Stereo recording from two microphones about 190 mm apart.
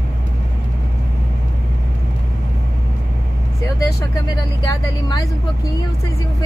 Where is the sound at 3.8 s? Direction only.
20° left (ahead or behind).